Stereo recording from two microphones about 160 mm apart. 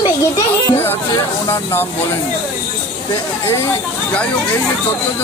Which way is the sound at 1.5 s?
15° left (ahead or behind).